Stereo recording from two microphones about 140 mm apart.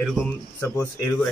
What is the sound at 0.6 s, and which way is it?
Speech, 20° left (ahead or behind).